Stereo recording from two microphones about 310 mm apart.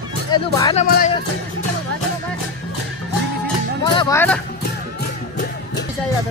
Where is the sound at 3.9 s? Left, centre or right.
Centre.